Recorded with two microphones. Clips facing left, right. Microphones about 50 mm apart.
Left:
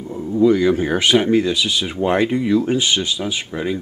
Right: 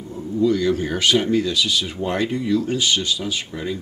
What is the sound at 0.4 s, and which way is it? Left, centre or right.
Speech, left.